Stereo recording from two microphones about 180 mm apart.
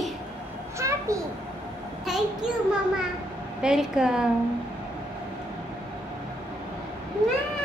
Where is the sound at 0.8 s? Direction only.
15° right (ahead or behind).